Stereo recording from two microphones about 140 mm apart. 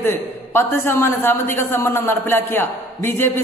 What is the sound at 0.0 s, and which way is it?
A woman's voice, 15° left (ahead or behind).